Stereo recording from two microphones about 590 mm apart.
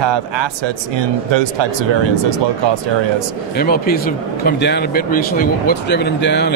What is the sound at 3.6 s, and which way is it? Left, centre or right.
Speech, centre.